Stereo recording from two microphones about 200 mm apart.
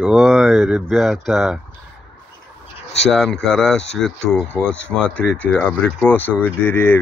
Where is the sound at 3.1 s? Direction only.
Centre (ahead or behind).